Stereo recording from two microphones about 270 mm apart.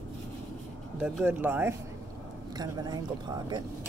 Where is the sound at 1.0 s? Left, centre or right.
Centre.